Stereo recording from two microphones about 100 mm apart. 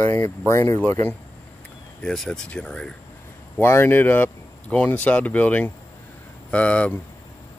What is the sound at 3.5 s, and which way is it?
Speech, 25° left (ahead or behind).